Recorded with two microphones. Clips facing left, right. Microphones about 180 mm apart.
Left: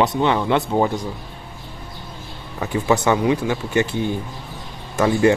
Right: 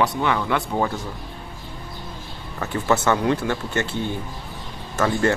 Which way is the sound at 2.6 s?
15° left (ahead or behind).